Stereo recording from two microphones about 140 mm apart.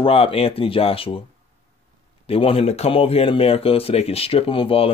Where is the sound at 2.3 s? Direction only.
40° left (ahead or behind).